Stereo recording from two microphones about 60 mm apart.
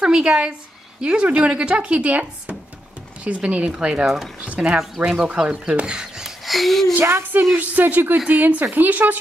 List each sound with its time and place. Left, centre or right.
0.0 s a woman's voice: centre
3.3 s speech: right
4.0 s speech: centre
4.4 s speech: centre
6.4 s a child's voice: centre
7.0 s speech: right
7.5 s speech: right